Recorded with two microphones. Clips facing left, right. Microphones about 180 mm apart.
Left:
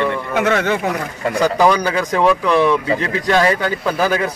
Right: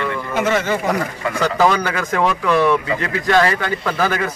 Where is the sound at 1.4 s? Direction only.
15° left (ahead or behind).